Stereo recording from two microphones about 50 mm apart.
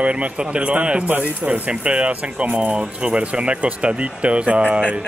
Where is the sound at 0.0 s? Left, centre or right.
Right.